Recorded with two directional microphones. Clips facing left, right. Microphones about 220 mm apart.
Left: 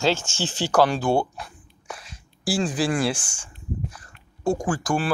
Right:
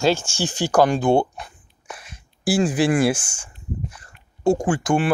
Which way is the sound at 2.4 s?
5° right (ahead or behind).